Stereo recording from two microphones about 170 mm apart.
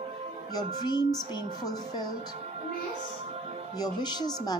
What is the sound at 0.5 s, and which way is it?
Speech, 25° left (ahead or behind).